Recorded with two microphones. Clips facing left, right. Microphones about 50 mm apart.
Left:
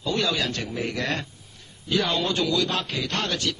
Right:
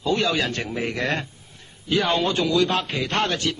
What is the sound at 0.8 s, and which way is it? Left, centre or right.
A man's voice, centre.